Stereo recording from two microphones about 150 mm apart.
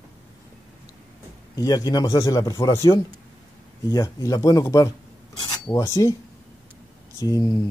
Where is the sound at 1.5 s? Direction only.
25° left (ahead or behind).